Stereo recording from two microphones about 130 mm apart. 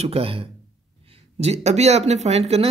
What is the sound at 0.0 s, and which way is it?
Speech, 50° right (ahead or behind).